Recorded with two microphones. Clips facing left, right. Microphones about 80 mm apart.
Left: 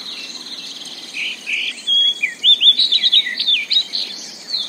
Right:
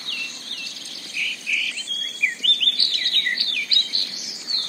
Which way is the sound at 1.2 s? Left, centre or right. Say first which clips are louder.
Left 1 dB; centre.